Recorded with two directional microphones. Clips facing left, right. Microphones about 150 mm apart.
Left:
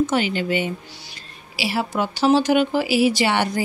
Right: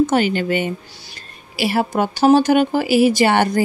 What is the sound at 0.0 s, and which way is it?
Speech, 45° right (ahead or behind).